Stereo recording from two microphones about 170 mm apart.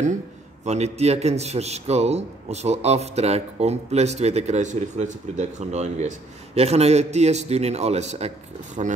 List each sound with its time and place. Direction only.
0.7 s a man's voice: 40° right (ahead or behind)